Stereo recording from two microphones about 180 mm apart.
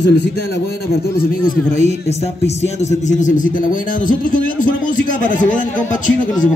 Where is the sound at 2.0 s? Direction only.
35° left (ahead or behind).